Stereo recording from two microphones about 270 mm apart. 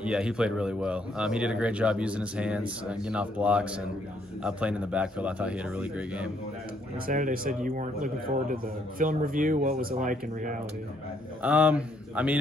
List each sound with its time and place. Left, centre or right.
0.0 s a man's voice: centre
7.1 s a man's voice: right
11.4 s a man's voice: centre